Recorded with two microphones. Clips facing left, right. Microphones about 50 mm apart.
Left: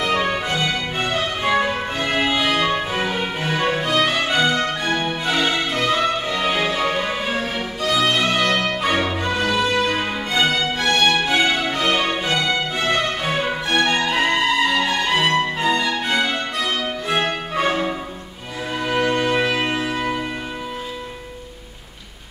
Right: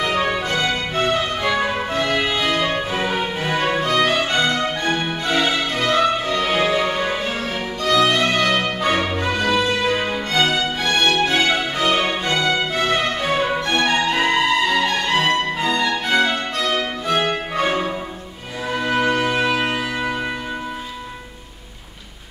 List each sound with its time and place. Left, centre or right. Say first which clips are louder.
0.0 s music: even; centre
2.0 s music: even; centre
6.2 s music: right 1 dB; centre
6.8 s music: right 1 dB; centre